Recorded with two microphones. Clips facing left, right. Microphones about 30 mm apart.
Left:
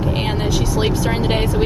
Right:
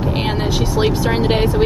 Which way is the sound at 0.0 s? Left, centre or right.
Centre.